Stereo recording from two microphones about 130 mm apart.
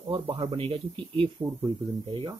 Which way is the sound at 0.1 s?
40° right (ahead or behind).